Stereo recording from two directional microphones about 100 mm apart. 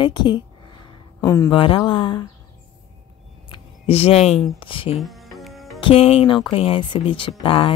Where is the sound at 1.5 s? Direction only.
60° left (ahead or behind).